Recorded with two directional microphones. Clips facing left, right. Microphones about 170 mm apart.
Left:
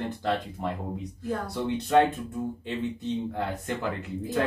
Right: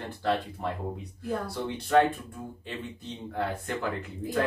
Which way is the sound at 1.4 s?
20° left (ahead or behind).